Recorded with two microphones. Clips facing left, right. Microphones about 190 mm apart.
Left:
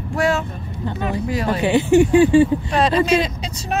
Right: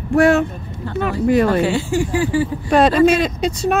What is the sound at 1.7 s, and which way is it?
Speech, 20° left (ahead or behind).